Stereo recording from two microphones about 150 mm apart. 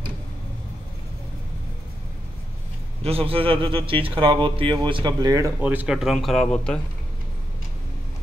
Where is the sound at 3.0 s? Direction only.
40° right (ahead or behind); by 5.5 s 25° right (ahead or behind).